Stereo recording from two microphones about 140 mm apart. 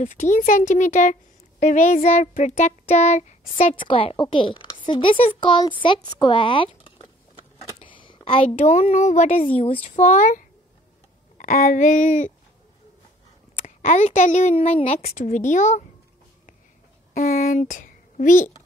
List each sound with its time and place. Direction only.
0.0 s speech: 65° left (ahead or behind)
3.8 s a woman's voice: 40° left (ahead or behind); by 10.4 s 60° left (ahead or behind)
11.3 s speech: 75° left (ahead or behind)
13.6 s speech: 65° left (ahead or behind)
15.0 s speech: 65° left (ahead or behind)
17.1 s a sound: 85° left; by 18.5 s 65° left (ahead or behind)